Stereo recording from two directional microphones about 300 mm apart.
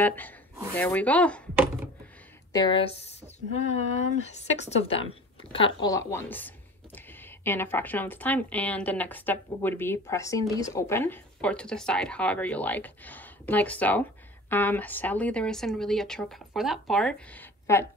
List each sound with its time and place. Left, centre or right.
0.0 s speech: centre
2.5 s speech: centre